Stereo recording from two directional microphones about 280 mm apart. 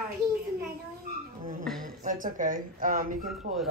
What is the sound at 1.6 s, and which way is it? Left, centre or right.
Speech, centre.